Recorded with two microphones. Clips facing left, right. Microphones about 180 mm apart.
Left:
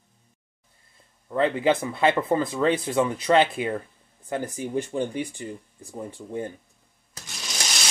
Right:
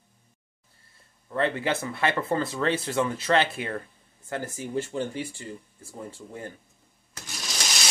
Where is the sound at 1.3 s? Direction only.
15° left (ahead or behind).